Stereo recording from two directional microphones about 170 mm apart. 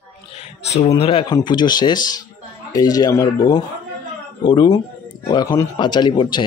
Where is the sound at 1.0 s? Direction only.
30° left (ahead or behind).